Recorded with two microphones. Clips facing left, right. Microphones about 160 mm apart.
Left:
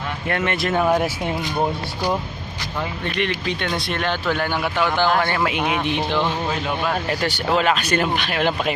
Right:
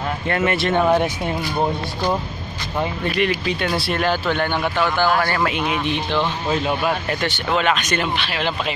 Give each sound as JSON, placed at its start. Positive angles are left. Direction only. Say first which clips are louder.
{"t": 0.3, "sound": "speech", "louder": "right 2 dB", "side_deg": 0}
{"t": 3.2, "sound": "speech", "louder": "right 3 dB", "side_deg": -5}
{"t": 4.4, "sound": "speech", "louder": "right 1 dB", "side_deg": 15}
{"t": 7.1, "sound": "speech", "louder": "left 1 dB", "side_deg": 35}